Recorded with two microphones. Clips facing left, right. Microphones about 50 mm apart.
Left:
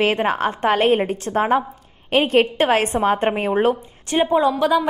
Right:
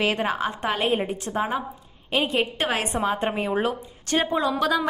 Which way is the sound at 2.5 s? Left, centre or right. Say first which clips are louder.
Left 7 dB; left.